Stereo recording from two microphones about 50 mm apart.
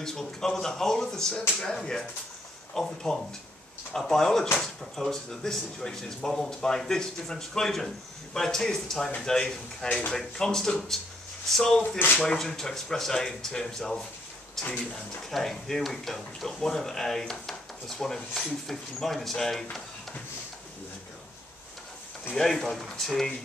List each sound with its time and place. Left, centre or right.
0.0 s speech: centre
14.6 s speech: left
15.3 s speech: centre
22.3 s speech: centre